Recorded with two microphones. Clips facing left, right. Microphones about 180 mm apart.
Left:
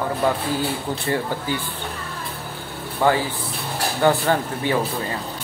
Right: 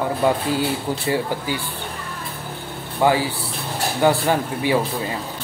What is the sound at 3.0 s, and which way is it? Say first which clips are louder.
Speech: right 1 dB; 15° right (ahead or behind).